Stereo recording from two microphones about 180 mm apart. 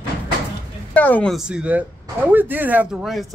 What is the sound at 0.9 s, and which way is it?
Speech, 10° left (ahead or behind).